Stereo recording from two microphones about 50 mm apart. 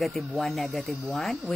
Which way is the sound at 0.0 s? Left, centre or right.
Centre.